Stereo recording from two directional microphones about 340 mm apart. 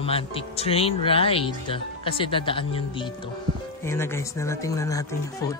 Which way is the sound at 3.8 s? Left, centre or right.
Centre.